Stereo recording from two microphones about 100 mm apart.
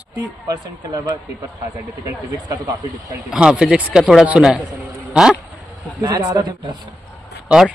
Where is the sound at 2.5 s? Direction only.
35° right (ahead or behind).